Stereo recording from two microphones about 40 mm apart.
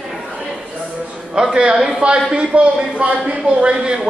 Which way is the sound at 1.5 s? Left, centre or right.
Right.